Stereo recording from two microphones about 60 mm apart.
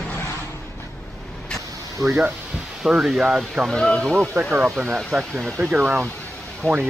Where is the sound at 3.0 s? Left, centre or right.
Centre.